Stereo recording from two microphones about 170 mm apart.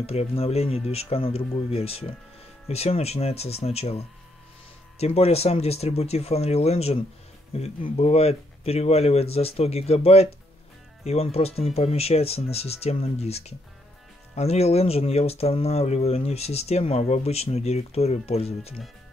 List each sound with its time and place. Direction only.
0.0 s speech: 35° left (ahead or behind)